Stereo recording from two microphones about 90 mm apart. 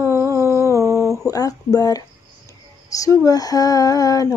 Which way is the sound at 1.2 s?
40° left (ahead or behind).